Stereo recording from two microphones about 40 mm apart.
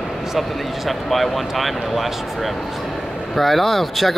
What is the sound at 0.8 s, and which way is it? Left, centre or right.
Speech, centre.